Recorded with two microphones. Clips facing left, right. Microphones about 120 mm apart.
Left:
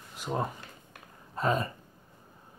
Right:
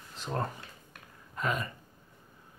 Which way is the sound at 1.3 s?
35° left (ahead or behind).